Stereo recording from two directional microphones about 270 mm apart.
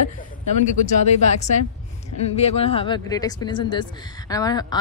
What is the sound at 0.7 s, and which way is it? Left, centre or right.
Speech, left.